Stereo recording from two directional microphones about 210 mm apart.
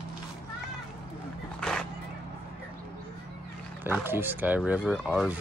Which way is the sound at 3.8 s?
10° right (ahead or behind).